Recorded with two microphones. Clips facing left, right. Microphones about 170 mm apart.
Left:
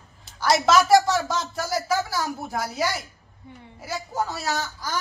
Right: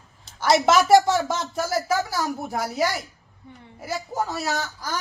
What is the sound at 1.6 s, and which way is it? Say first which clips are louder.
A woman's voice: right 2 dB; centre (ahead or behind).